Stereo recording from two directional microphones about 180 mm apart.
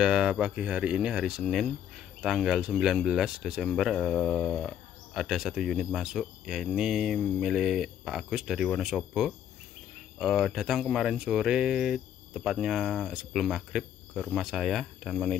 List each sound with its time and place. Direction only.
0.0 s speech: 5° right (ahead or behind)